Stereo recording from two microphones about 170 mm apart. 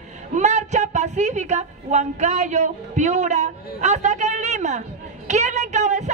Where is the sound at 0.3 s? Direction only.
45° right (ahead or behind).